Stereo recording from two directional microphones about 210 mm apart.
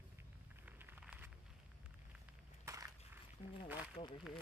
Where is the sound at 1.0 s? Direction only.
5° right (ahead or behind).